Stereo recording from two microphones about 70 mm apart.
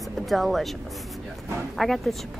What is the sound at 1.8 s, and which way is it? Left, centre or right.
Speech, centre.